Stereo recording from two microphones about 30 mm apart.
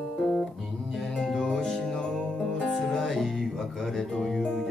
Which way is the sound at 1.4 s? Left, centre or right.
Centre.